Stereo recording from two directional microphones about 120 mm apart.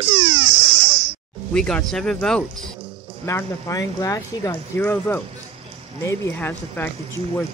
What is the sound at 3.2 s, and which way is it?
Speech, 25° left (ahead or behind).